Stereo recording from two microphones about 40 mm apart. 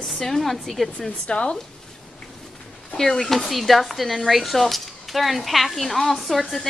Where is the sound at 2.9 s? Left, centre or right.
Centre.